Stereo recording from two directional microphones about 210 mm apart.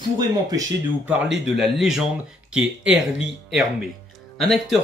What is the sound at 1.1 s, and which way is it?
Speech, 5° right (ahead or behind).